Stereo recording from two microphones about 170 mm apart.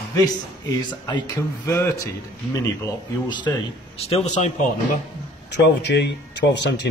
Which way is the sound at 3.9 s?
40° left (ahead or behind).